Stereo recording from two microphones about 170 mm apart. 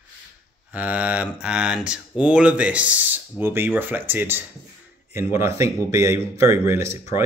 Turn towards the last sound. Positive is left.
turn(degrees=-15)  # may be behind; listen again after turning